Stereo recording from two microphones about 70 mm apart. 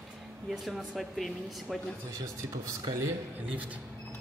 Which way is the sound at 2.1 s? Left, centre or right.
Right.